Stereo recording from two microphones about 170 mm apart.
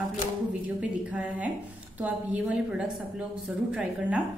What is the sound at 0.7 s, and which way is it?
A woman's voice, 5° right (ahead or behind).